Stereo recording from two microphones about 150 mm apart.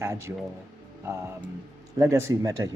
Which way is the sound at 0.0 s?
15° right (ahead or behind).